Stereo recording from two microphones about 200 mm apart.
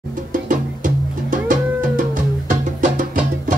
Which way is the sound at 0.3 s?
40° right (ahead or behind).